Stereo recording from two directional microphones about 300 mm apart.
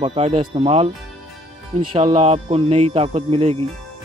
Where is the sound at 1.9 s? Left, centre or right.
Right.